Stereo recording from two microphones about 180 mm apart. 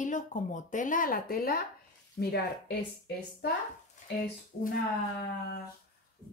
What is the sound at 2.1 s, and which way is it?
Speech, 65° left (ahead or behind).